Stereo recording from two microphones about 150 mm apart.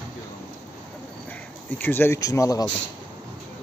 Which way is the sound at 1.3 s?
10° left (ahead or behind).